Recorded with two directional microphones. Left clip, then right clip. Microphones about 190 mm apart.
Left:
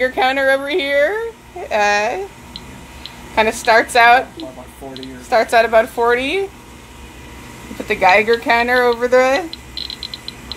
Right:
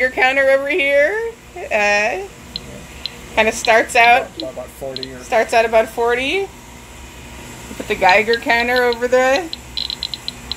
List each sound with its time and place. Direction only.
0.0 s a woman's voice: 10° left (ahead or behind)
3.3 s a woman's voice: 15° left (ahead or behind)
5.3 s a woman's voice: 15° left (ahead or behind)
7.9 s a woman's voice: 15° left (ahead or behind)
9.5 s a sound: 5° right (ahead or behind)